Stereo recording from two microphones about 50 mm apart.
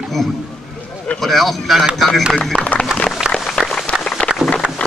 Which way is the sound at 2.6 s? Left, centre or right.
Left.